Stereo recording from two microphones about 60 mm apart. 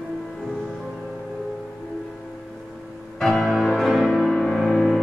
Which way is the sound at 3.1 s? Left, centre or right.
Centre.